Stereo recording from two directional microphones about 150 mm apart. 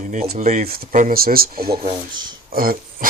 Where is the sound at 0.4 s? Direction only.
55° right (ahead or behind).